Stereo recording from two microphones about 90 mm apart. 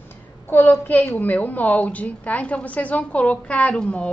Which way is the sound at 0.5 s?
20° left (ahead or behind).